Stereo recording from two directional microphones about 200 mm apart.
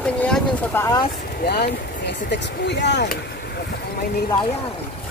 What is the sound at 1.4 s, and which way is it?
Speech, 50° left (ahead or behind).